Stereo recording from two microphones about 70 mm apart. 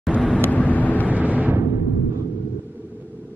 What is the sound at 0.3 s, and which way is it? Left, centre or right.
Vehicle, left.